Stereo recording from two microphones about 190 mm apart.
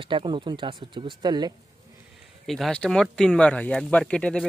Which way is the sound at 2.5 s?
5° left (ahead or behind).